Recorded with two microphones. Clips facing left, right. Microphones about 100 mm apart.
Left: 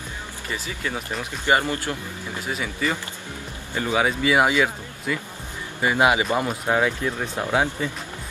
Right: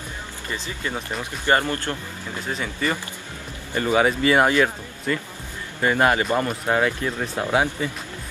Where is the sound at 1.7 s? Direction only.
15° left (ahead or behind).